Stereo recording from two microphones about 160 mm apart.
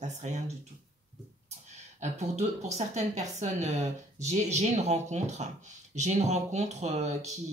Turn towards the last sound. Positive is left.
turn(degrees=-45)  # may be behind; listen again after turning